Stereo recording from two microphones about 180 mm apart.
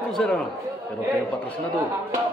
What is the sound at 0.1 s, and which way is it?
Speech, 5° left (ahead or behind).